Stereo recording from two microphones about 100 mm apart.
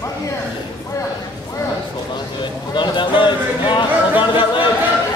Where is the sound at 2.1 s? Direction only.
50° left (ahead or behind).